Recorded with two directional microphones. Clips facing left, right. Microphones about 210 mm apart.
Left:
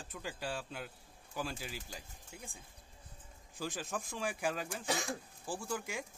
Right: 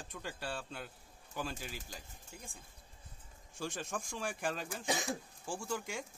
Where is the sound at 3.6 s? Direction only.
5° left (ahead or behind).